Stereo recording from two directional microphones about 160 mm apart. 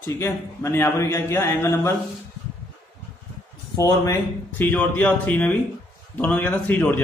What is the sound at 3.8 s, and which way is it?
A man's voice, 20° left (ahead or behind).